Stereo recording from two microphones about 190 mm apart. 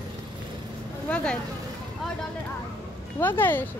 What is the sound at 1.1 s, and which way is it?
Speech, 5° left (ahead or behind).